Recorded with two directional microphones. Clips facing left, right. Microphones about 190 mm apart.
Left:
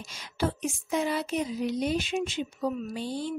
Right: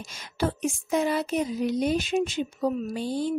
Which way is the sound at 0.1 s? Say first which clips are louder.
Right 2 dB; 50° right (ahead or behind).